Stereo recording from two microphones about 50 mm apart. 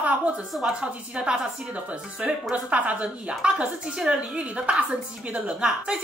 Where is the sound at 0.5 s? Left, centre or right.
Centre.